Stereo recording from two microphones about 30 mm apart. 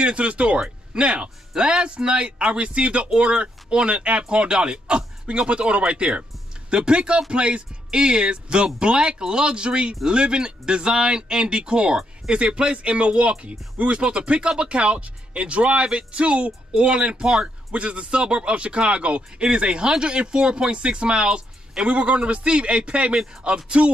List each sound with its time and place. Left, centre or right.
0.0 s speech: right